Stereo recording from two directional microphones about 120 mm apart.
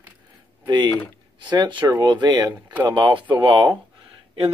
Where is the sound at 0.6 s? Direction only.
40° right (ahead or behind).